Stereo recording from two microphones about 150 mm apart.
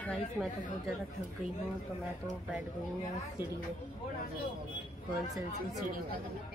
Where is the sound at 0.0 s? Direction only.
5° left (ahead or behind).